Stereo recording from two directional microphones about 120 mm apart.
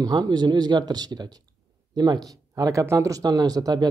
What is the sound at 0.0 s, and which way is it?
Speech, 35° right (ahead or behind).